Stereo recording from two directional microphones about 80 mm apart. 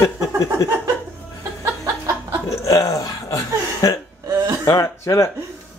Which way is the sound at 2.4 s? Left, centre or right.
Left.